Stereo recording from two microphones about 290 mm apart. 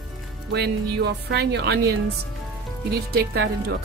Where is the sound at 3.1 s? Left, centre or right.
Right.